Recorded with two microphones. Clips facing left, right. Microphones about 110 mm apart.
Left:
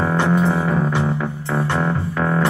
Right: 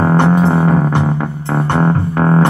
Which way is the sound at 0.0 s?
50° right (ahead or behind).